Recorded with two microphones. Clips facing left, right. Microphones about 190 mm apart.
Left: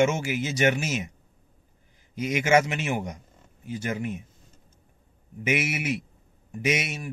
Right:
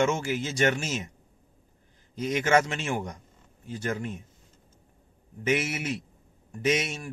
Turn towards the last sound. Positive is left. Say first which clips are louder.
# right 1 dB
turn(degrees=10)  # may be behind; listen again after turning